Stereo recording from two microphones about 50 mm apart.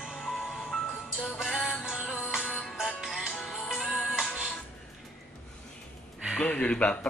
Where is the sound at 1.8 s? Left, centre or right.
Centre.